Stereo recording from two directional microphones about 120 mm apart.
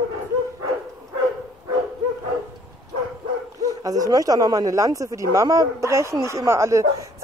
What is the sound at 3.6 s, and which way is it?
A man's voice, 30° right (ahead or behind).